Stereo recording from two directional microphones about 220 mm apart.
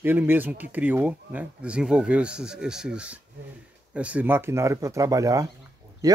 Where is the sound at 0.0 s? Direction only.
10° right (ahead or behind).